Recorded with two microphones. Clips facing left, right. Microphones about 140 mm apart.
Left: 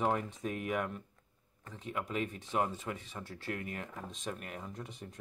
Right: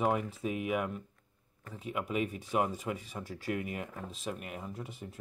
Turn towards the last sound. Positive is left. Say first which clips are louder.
# right 2 dB
turn(degrees=-5)  # may be behind; listen again after turning